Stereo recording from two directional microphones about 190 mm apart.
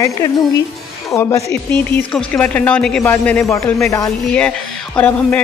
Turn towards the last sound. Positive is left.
turn(degrees=10)  # may be behind; listen again after turning